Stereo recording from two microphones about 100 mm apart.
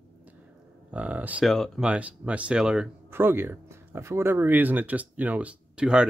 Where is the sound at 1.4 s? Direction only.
Centre (ahead or behind).